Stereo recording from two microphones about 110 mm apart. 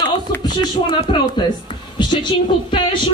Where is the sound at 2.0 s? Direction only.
45° left (ahead or behind).